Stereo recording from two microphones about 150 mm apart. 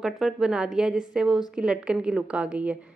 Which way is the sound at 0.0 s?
5° right (ahead or behind).